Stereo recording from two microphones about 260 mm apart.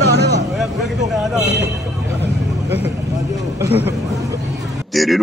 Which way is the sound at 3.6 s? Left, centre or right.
Centre.